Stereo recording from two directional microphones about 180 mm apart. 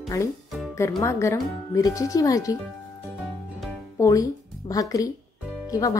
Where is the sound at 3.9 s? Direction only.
20° left (ahead or behind).